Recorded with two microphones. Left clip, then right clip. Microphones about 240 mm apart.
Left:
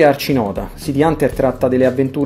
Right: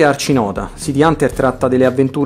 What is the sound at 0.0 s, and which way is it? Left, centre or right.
Speech, centre.